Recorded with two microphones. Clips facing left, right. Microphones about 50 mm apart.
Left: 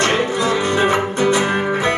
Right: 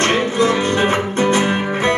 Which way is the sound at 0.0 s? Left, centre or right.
Right.